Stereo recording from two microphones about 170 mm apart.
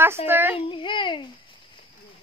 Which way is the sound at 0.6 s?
30° left (ahead or behind).